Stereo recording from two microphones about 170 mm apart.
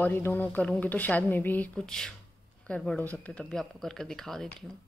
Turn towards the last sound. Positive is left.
turn(degrees=0)  # may be behind; listen again after turning